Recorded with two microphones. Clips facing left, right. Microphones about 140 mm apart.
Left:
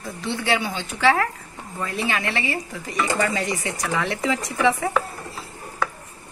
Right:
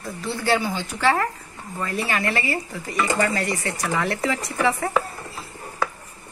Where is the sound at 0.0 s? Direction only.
Centre (ahead or behind).